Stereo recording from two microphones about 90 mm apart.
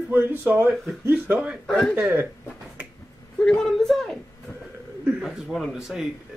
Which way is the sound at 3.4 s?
5° left (ahead or behind).